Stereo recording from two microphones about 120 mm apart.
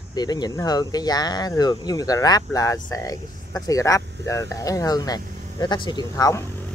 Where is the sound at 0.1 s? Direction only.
35° left (ahead or behind).